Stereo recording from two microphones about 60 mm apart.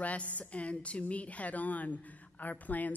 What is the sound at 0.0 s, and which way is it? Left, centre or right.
A woman's voice, left.